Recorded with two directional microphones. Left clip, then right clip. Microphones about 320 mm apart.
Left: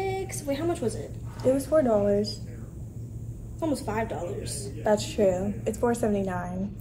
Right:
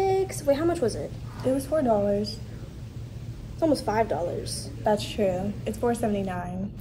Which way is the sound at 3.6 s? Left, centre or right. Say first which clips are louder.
Right 5 dB; centre.